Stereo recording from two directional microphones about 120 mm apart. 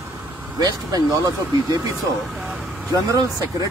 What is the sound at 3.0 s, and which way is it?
Speech, 30° right (ahead or behind).